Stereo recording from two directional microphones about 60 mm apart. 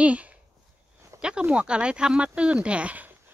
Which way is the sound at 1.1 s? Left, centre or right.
Right.